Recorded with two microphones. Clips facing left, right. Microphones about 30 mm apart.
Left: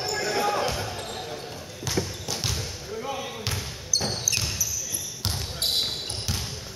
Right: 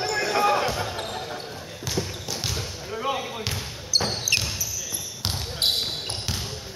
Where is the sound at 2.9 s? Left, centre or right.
Right.